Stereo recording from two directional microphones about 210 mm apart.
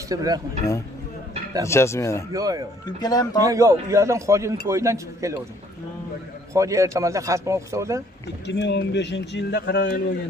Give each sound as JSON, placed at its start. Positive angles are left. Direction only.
{"t": 0.1, "sound": "speech", "side_deg": -15}
{"t": 1.6, "sound": "speech", "side_deg": 15}
{"t": 2.3, "sound": "speech", "side_deg": -15}
{"t": 3.0, "sound": "speech", "side_deg": 15}
{"t": 3.3, "sound": "speech", "side_deg": -15}
{"t": 6.5, "sound": "speech", "side_deg": -15}
{"t": 8.5, "sound": "a man's voice", "side_deg": 55}